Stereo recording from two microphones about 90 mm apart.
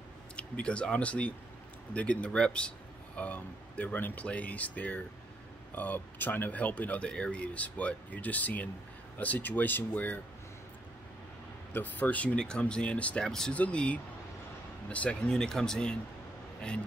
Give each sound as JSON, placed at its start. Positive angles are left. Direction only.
{"t": 0.4, "sound": "speech", "side_deg": 10}
{"t": 11.7, "sound": "speech", "side_deg": 20}